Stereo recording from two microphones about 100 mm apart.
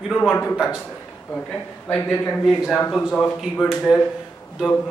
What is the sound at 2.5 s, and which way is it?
A man's voice, centre (ahead or behind).